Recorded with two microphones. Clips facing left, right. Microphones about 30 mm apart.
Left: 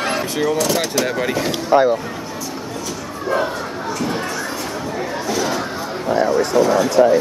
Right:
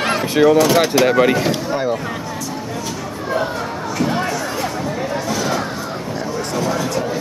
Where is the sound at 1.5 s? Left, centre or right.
Centre.